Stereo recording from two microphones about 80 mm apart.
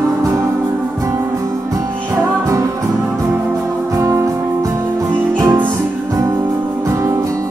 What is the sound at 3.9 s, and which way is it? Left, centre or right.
Music, right.